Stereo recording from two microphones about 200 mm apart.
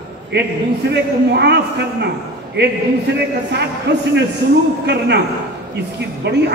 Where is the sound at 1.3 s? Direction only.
55° right (ahead or behind).